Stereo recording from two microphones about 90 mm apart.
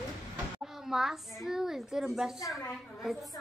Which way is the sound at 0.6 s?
5° right (ahead or behind).